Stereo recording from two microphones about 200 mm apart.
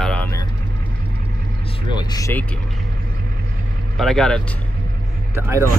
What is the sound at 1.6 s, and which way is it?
Speech, 25° left (ahead or behind).